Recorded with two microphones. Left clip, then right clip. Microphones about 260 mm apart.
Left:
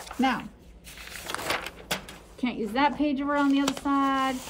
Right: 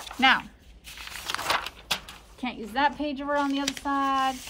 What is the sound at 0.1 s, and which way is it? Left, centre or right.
Chopping, centre.